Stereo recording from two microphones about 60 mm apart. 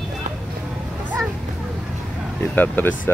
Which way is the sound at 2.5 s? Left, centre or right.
Left.